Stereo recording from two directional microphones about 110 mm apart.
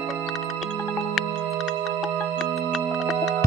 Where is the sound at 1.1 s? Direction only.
Centre (ahead or behind).